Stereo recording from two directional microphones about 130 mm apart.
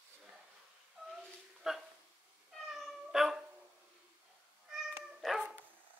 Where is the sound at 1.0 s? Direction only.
10° right (ahead or behind).